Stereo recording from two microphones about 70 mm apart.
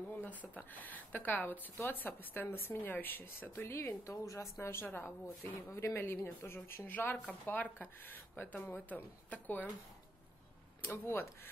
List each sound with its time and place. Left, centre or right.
0.1 s a woman's voice: left
5.7 s a woman's voice: left
7.2 s speech: left
10.8 s a woman's voice: left